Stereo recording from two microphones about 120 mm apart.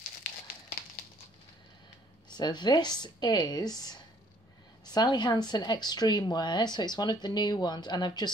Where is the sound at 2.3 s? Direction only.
35° left (ahead or behind).